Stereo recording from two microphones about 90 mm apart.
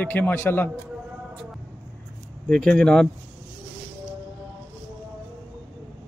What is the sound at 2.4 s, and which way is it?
Mantra, 10° left (ahead or behind).